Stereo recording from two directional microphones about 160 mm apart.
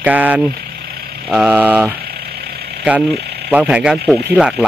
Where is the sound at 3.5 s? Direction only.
5° right (ahead or behind).